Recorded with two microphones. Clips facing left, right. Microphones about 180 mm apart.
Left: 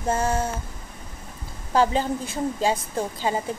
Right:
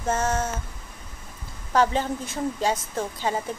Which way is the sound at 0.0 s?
10° left (ahead or behind).